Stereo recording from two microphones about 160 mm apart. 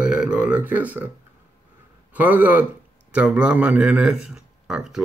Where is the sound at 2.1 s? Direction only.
10° right (ahead or behind).